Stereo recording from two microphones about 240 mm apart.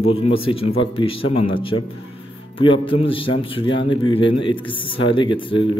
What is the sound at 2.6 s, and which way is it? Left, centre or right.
Speech, left.